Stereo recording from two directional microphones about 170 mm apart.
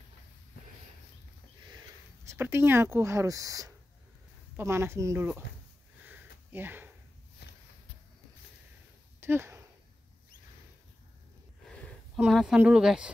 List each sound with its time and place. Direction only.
2.2 s speech: 15° right (ahead or behind)
6.0 s sniff: 10° right (ahead or behind)
7.4 s a sound: 80° left
9.2 s speech: 15° right (ahead or behind)
11.7 s a sound: 5° left (ahead or behind)
12.5 s speech: 5° right (ahead or behind)